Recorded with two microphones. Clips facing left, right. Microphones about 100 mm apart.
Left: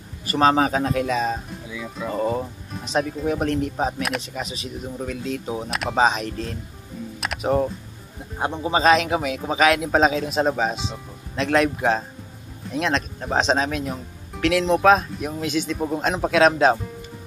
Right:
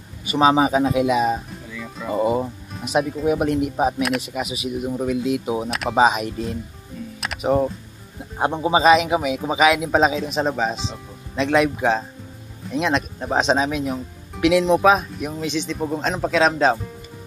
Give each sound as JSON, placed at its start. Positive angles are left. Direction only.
{"t": 0.3, "sound": "speech", "side_deg": -5}
{"t": 1.7, "sound": "music", "side_deg": 5}
{"t": 2.0, "sound": "speech", "side_deg": -10}
{"t": 5.7, "sound": "speech", "side_deg": 0}
{"t": 7.2, "sound": "music", "side_deg": 0}
{"t": 8.4, "sound": "speech", "side_deg": -20}
{"t": 8.8, "sound": "speech", "side_deg": -5}